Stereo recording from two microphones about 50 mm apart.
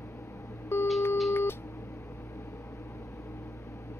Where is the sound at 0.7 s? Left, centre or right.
Left.